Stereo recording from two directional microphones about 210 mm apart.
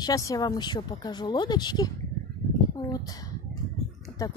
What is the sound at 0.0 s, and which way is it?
Speech, 15° left (ahead or behind).